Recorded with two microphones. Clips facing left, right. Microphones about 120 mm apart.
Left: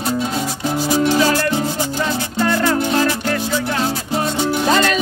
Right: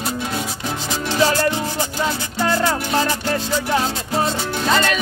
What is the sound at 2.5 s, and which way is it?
Music, 15° right (ahead or behind).